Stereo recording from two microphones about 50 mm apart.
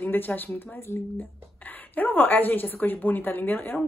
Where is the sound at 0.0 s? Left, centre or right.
Left.